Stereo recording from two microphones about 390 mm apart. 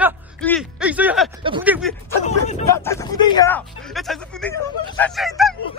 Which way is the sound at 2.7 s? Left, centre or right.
Centre.